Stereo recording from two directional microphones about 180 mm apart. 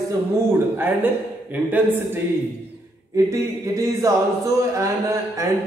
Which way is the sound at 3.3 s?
20° right (ahead or behind).